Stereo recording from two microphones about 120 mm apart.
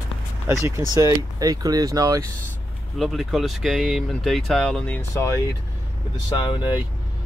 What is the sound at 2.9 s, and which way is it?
Speech, centre (ahead or behind).